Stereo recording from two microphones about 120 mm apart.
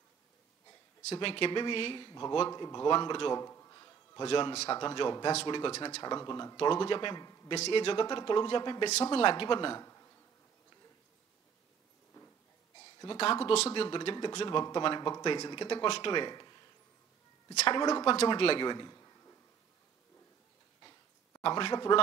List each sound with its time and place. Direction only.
1.1 s speech: 50° left (ahead or behind)
3.3 s a sound: 25° left (ahead or behind)
4.2 s speech: 45° left (ahead or behind)
6.0 s speech: 35° left (ahead or behind)
6.5 s speech: 45° left (ahead or behind)
7.5 s speech: 55° left (ahead or behind)
9.8 s insect: 25° left (ahead or behind)
13.0 s speech: 45° left (ahead or behind)
17.7 s a man's voice: 40° left (ahead or behind)
21.4 s speech: 45° left (ahead or behind)